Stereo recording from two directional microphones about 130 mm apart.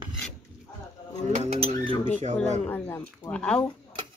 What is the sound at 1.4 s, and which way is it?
Cutlery, 55° right (ahead or behind).